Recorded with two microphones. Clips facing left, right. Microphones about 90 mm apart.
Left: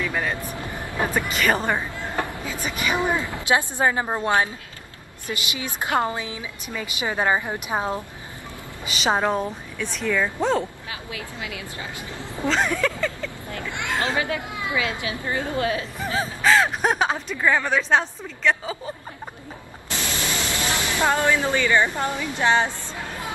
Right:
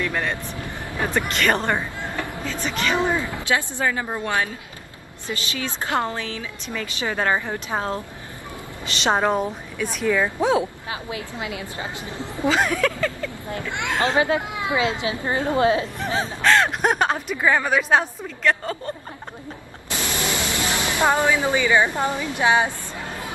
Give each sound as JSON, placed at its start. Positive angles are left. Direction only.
{"t": 0.0, "sound": "a woman's voice", "side_deg": 5}
{"t": 0.6, "sound": "vehicle", "side_deg": 25}
{"t": 1.3, "sound": "a woman's voice", "side_deg": 5}
{"t": 11.1, "sound": "a woman's voice", "side_deg": -25}
{"t": 12.4, "sound": "speech", "side_deg": -5}
{"t": 13.5, "sound": "a woman's voice", "side_deg": -20}
{"t": 16.4, "sound": "speech", "side_deg": 0}
{"t": 19.9, "sound": "speech", "side_deg": -15}